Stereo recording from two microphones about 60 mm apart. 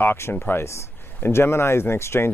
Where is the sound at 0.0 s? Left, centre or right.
Left.